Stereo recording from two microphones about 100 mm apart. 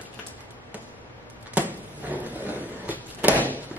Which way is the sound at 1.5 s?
15° right (ahead or behind).